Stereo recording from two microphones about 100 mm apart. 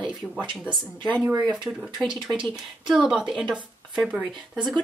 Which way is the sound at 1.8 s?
45° right (ahead or behind).